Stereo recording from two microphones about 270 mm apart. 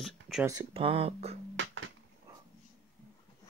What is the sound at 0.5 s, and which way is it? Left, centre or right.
Speech, centre.